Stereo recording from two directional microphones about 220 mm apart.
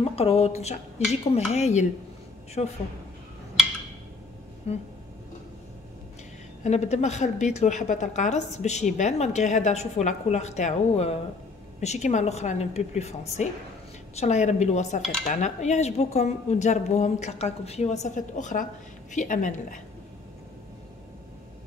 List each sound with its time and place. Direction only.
0.1 s a woman's voice: 25° left (ahead or behind)
4.7 s a woman's voice: 30° left (ahead or behind)
6.6 s a woman's voice: 30° left (ahead or behind)